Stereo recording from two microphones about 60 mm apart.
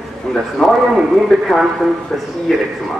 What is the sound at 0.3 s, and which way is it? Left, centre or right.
A man's voice, centre.